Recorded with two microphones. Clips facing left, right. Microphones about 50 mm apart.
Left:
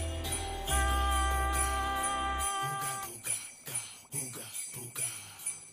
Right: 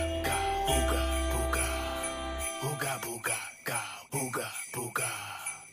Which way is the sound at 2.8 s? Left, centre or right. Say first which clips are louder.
Right 4 dB; right.